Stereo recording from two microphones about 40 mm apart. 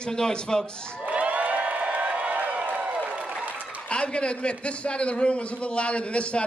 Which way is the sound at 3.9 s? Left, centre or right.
Left.